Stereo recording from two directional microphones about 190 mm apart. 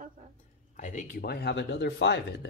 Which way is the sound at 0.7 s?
40° left (ahead or behind).